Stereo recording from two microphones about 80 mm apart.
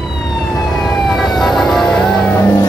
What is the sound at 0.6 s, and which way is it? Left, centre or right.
Emergency vehicle, centre.